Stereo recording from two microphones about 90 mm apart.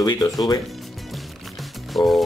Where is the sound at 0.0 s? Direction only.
50° left (ahead or behind).